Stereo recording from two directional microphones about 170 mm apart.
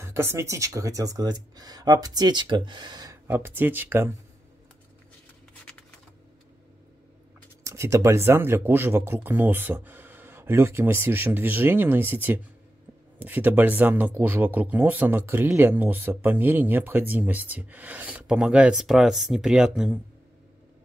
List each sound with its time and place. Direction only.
0.0 s speech: 15° right (ahead or behind)
3.3 s speech: 10° right (ahead or behind)
7.6 s speech: 15° right (ahead or behind)